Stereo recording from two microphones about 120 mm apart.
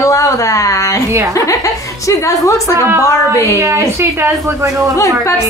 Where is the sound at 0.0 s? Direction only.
25° left (ahead or behind).